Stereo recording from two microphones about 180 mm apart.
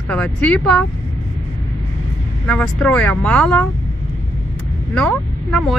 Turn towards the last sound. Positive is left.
turn(degrees=5)  # may be behind; listen again after turning